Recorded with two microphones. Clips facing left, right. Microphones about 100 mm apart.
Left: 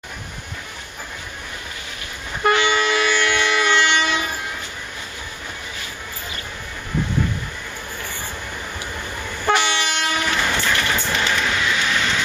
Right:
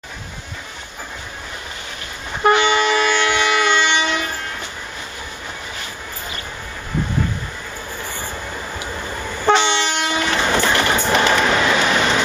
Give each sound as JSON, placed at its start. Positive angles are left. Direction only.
{"t": 2.4, "sound": "vehicle", "side_deg": -20}
{"t": 9.5, "sound": "train", "side_deg": -25}
{"t": 10.6, "sound": "vehicle", "side_deg": -30}
{"t": 11.1, "sound": "vehicle", "side_deg": -55}